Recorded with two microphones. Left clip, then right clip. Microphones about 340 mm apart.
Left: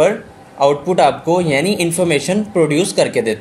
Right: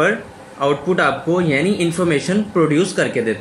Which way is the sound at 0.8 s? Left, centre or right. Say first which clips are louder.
Left 4 dB; centre.